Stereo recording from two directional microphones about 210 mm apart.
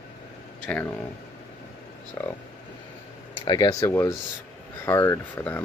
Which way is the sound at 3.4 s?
20° left (ahead or behind).